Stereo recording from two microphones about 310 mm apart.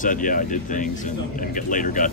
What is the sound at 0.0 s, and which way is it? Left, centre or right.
Speech, left.